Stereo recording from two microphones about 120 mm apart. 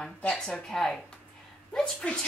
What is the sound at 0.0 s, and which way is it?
A woman's voice, 10° left (ahead or behind).